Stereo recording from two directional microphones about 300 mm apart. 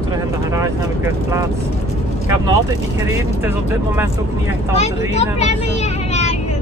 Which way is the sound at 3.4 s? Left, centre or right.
Centre.